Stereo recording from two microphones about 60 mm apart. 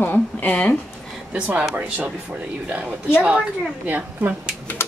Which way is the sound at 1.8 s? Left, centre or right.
Right.